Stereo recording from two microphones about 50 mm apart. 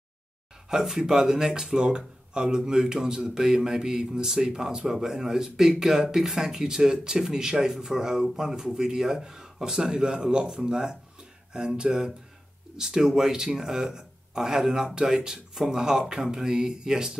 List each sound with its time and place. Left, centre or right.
0.7 s speech: centre